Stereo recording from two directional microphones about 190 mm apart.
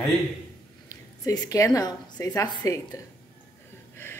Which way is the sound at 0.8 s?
20° left (ahead or behind).